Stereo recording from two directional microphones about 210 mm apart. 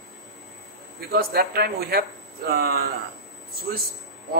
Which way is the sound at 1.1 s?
45° right (ahead or behind).